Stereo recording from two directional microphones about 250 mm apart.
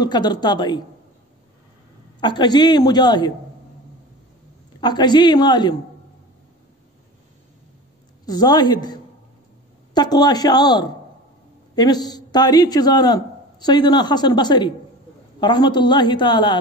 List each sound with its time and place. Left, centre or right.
0.0 s a man's voice: centre
2.1 s a man's voice: centre
4.7 s a man's voice: centre
8.3 s a man's voice: centre
9.9 s a man's voice: centre